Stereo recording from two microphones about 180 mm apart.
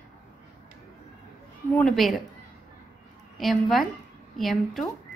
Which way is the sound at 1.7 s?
5° left (ahead or behind).